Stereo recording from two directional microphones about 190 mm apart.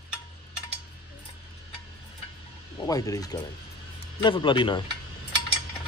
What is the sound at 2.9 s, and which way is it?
A man's voice, 20° left (ahead or behind).